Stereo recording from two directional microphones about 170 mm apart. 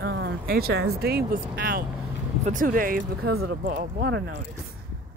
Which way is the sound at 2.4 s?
50° right (ahead or behind).